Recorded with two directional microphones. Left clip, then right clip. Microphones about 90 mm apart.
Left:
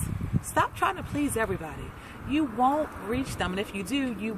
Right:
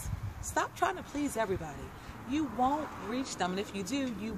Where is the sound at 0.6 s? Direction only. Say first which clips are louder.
Left 5 dB; 30° right (ahead or behind).